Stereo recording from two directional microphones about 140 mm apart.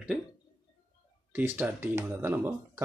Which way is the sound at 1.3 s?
10° right (ahead or behind).